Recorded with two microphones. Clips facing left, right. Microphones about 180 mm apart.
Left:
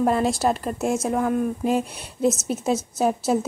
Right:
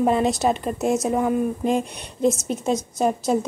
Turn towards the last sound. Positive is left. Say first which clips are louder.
# even
turn(degrees=5)  # may be behind; listen again after turning